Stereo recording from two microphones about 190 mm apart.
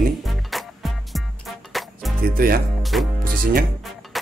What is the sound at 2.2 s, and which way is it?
Speech, 50° right (ahead or behind).